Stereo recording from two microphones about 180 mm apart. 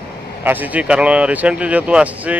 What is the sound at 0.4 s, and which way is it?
Speech, 10° right (ahead or behind).